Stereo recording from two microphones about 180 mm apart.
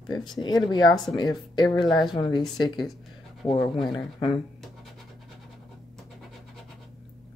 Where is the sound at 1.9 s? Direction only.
Centre (ahead or behind).